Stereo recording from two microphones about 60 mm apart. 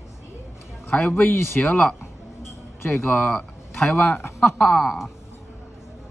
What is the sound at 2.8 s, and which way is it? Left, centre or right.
Speech, left.